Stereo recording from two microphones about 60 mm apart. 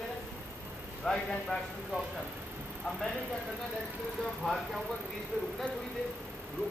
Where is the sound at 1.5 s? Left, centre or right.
Left.